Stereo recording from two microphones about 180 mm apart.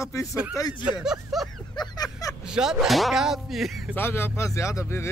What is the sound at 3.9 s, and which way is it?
Speech, 10° left (ahead or behind).